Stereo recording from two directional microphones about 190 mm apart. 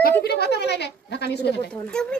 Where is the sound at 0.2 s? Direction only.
55° left (ahead or behind).